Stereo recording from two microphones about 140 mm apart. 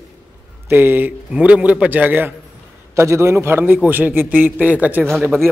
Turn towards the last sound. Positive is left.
turn(degrees=-15)  # may be behind; listen again after turning